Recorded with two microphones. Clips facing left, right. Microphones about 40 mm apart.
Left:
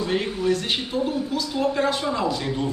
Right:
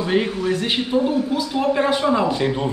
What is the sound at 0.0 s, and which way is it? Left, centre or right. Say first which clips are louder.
A man's voice: right 3 dB; right.